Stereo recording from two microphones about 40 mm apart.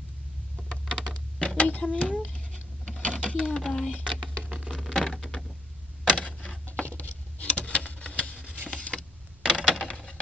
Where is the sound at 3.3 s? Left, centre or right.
Centre.